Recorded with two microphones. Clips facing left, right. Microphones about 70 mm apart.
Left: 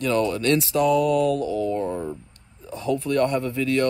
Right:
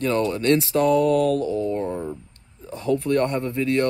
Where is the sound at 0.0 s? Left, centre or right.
Right.